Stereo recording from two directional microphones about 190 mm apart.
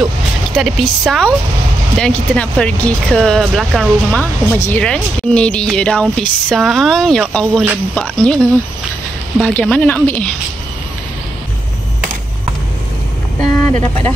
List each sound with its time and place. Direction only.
0.6 s speech: centre (ahead or behind)
9.4 s speech: 5° left (ahead or behind)
13.4 s speech: 15° left (ahead or behind)